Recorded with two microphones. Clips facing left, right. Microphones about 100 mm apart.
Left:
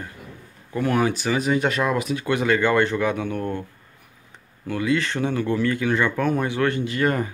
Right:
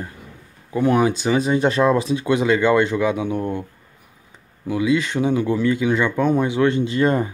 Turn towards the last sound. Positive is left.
turn(degrees=-25)  # may be behind; listen again after turning